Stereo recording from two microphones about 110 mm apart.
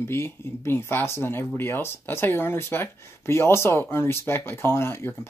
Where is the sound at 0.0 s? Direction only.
25° left (ahead or behind).